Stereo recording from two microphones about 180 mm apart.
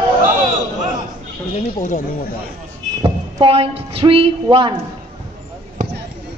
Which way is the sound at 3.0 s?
25° right (ahead or behind).